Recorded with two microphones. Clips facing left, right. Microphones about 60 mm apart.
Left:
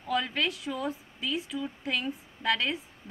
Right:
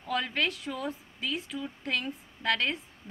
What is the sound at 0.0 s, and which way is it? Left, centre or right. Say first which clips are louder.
A woman's voice: left 1 dB; centre.